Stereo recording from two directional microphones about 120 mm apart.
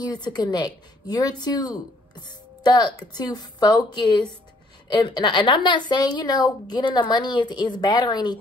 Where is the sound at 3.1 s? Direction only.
35° left (ahead or behind).